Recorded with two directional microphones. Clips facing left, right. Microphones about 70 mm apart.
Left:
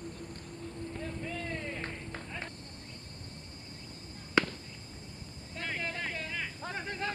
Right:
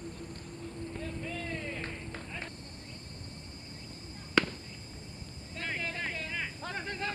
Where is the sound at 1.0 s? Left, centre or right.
Left.